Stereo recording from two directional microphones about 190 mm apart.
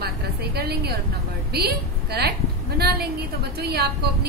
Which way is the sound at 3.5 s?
55° right (ahead or behind).